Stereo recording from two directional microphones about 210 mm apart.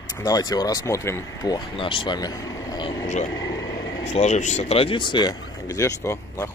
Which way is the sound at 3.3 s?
20° left (ahead or behind).